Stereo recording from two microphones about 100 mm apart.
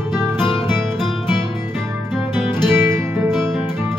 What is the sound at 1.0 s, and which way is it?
Music, 5° left (ahead or behind).